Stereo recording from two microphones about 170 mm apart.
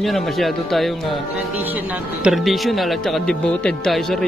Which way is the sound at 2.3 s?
Centre (ahead or behind).